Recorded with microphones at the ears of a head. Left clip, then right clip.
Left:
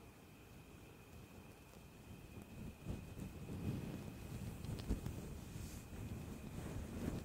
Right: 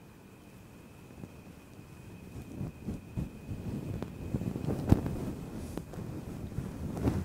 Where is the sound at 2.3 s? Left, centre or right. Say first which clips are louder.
Right 13 dB; right.